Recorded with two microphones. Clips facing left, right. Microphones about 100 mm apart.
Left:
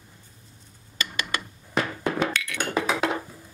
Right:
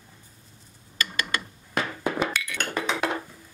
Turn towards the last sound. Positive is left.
turn(degrees=5)  # may be behind; listen again after turning